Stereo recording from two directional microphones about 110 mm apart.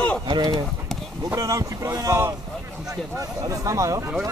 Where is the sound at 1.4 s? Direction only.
30° right (ahead or behind).